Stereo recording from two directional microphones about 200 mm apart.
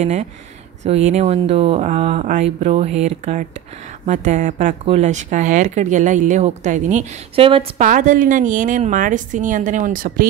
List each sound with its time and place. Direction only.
0.0 s speech: 35° right (ahead or behind)
7.8 s speech: 40° right (ahead or behind)